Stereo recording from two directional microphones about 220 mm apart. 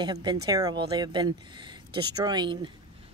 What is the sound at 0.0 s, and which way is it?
Speech, 20° right (ahead or behind).